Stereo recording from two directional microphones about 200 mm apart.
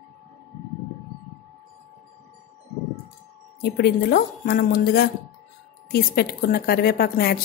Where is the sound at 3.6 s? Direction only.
50° left (ahead or behind).